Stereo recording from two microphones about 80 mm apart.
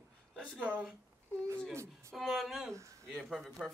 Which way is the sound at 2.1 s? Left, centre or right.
Centre.